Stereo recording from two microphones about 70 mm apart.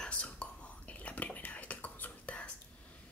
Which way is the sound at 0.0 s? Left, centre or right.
Centre.